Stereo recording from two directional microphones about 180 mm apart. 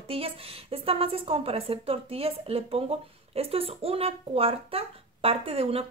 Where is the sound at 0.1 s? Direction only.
30° right (ahead or behind).